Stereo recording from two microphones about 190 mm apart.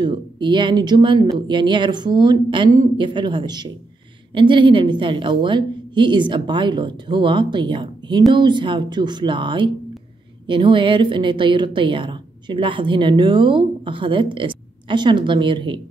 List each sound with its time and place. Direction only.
0.0 s a woman's voice: 25° right (ahead or behind)